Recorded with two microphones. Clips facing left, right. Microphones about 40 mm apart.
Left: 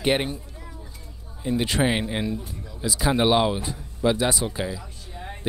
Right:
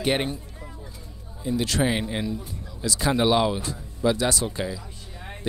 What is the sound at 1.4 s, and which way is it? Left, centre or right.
Speech, left.